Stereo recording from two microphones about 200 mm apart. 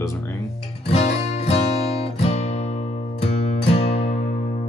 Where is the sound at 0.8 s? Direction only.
30° left (ahead or behind).